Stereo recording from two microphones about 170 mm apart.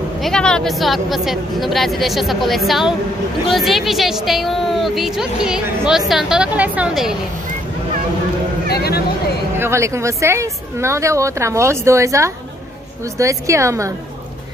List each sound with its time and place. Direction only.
0.2 s a woman's voice: 5° left (ahead or behind)
8.6 s speech: 70° left (ahead or behind)
9.6 s speech: 15° right (ahead or behind)